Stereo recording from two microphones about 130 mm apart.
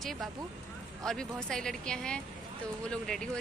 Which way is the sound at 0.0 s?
Centre (ahead or behind).